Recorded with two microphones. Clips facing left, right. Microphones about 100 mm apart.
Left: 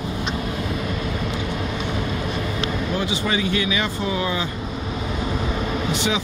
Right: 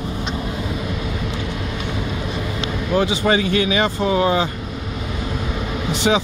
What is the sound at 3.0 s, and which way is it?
Speech, 50° right (ahead or behind).